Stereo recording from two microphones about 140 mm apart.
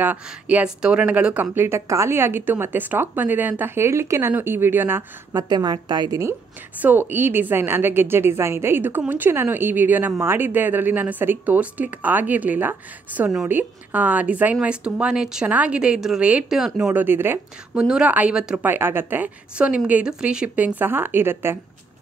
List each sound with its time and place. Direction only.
0.0 s a woman's voice: 10° right (ahead or behind)
5.5 s a woman's voice: 30° right (ahead or behind)
6.8 s a woman's voice: 15° right (ahead or behind)